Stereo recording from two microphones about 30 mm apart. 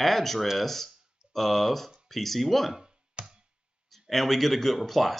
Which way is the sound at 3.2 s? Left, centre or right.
Right.